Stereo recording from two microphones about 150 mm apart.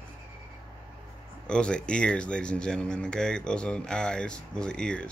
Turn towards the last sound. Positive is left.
turn(degrees=5)  # may be behind; listen again after turning